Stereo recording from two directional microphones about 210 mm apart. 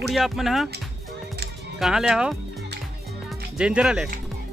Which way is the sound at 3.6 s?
5° right (ahead or behind).